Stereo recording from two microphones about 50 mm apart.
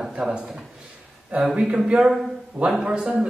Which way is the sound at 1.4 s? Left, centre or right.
Centre.